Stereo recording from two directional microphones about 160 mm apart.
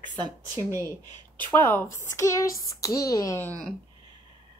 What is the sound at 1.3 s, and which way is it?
Speech, 15° left (ahead or behind).